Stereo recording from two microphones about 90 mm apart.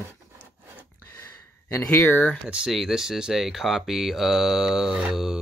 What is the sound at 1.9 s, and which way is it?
Speech, 25° left (ahead or behind).